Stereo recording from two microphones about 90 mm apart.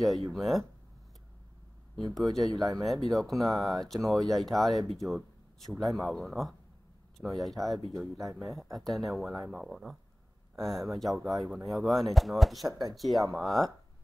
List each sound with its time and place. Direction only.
0.0 s speech: centre (ahead or behind)
2.1 s speech: centre (ahead or behind)
2.5 s speech: 45° right (ahead or behind)
2.8 s speech: centre (ahead or behind)
12.6 s speech: 40° right (ahead or behind)
12.9 s speech: centre (ahead or behind)